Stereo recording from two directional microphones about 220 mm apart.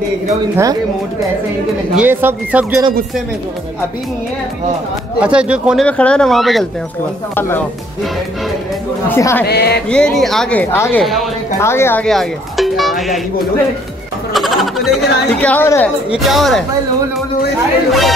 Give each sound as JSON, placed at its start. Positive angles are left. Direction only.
{"t": 0.3, "sound": "speech", "side_deg": -15}
{"t": 2.0, "sound": "speech", "side_deg": -10}
{"t": 5.2, "sound": "speech", "side_deg": -5}
{"t": 9.1, "sound": "speech", "side_deg": 10}
{"t": 9.5, "sound": "speech", "side_deg": 45}
{"t": 9.8, "sound": "speech", "side_deg": 5}
{"t": 14.3, "sound": "speech", "side_deg": 0}